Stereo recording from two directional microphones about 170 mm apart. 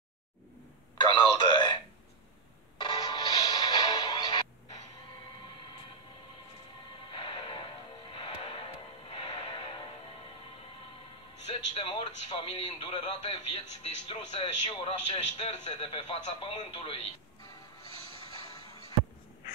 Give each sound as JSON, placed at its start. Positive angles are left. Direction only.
{"t": 0.9, "sound": "a sound", "side_deg": 30}
{"t": 2.8, "sound": "music", "side_deg": 25}
{"t": 7.1, "sound": "music", "side_deg": 30}
{"t": 11.4, "sound": "music", "side_deg": 35}
{"t": 12.3, "sound": "a man's voice", "side_deg": 30}